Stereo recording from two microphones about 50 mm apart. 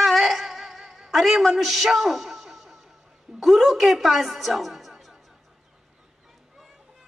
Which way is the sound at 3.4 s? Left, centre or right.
Centre.